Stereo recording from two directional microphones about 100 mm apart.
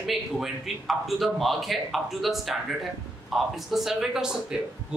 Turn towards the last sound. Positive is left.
turn(degrees=-5)  # may be behind; listen again after turning